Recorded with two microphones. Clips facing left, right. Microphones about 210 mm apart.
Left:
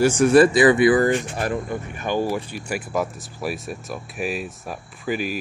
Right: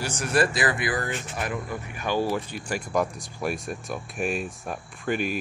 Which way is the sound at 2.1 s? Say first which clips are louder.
Left 2 dB; 15° left (ahead or behind).